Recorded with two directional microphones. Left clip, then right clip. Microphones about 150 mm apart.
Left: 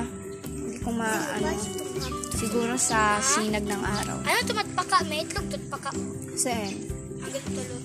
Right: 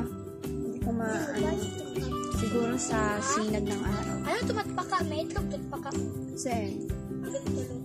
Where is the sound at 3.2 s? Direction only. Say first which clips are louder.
Left 4 dB; 30° right (ahead or behind).